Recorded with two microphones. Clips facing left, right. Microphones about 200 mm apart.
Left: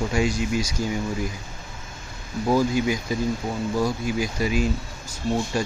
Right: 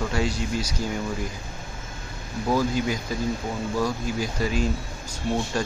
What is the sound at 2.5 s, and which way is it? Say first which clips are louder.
Speech: left 3 dB; 10° left (ahead or behind).